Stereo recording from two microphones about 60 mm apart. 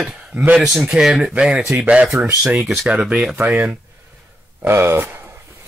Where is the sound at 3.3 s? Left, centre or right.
Right.